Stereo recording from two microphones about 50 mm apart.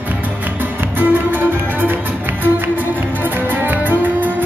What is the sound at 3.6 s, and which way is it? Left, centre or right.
Music, right.